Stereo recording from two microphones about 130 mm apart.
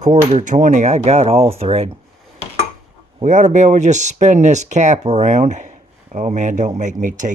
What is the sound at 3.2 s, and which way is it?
Speech, 70° right (ahead or behind).